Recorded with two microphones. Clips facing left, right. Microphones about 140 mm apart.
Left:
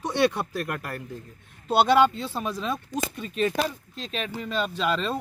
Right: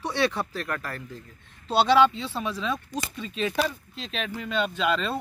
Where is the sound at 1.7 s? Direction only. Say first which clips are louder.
Even; 50° left (ahead or behind).